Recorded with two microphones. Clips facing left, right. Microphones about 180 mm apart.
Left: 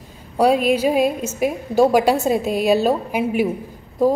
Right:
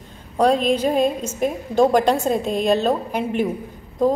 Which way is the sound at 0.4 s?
10° left (ahead or behind).